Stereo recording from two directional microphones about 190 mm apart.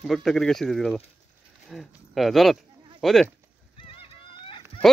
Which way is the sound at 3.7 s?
25° left (ahead or behind).